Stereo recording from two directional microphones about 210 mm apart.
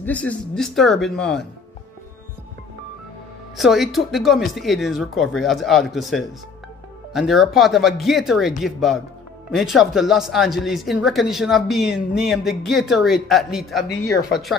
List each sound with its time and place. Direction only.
0.0 s speech: 5° left (ahead or behind)
3.5 s speech: centre (ahead or behind)